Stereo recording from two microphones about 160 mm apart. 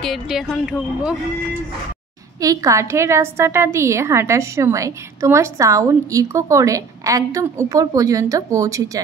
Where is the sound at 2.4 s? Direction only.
20° right (ahead or behind).